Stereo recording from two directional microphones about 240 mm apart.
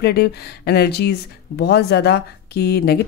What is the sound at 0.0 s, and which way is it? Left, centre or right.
A woman's voice, left.